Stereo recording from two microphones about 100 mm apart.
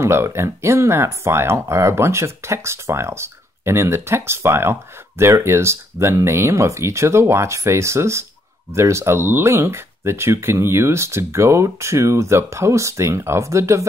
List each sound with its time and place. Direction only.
0.0 s speech: 25° right (ahead or behind)